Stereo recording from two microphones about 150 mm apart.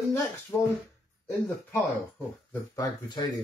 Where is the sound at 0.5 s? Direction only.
10° left (ahead or behind).